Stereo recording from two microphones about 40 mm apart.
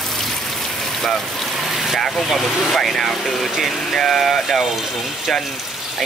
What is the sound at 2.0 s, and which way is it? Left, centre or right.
Speech, centre.